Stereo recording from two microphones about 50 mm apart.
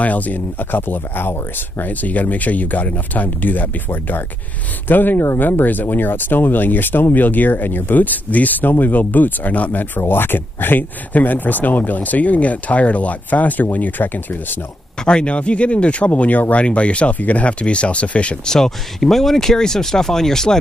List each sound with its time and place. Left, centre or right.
0.0 s speech: left
15.0 s speech: left
18.5 s speech: centre